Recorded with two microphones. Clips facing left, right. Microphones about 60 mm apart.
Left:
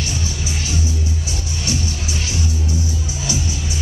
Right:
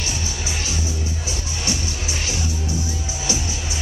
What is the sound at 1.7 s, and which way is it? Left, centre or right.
Music, right.